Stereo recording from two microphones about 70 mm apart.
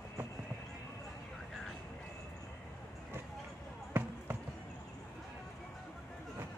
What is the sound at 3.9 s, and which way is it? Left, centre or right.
Basketball bounce, right.